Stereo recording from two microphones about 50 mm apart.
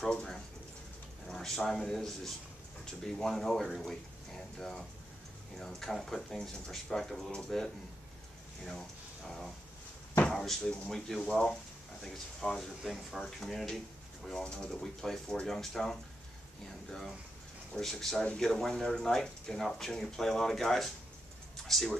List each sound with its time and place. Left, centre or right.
0.1 s speech: centre
14.4 s speech: left
14.8 s speech: centre
17.7 s speech: centre